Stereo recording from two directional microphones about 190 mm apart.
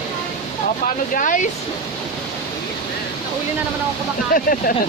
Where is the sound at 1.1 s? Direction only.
45° left (ahead or behind).